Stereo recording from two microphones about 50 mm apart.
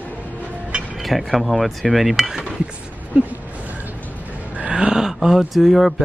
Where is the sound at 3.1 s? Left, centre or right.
Right.